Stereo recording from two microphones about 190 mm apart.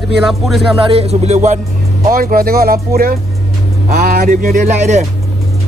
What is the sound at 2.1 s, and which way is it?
A man's voice, 50° right (ahead or behind).